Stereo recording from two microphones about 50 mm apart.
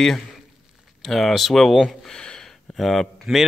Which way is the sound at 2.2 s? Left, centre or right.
Centre.